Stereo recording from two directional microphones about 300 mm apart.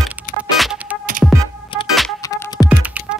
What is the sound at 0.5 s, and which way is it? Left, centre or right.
Music, centre.